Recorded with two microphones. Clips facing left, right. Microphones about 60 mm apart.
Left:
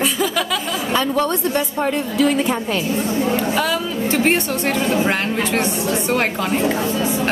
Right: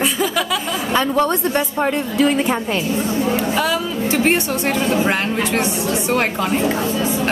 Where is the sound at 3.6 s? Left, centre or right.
Centre.